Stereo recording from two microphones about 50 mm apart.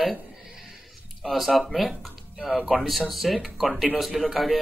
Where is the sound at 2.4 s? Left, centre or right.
Centre.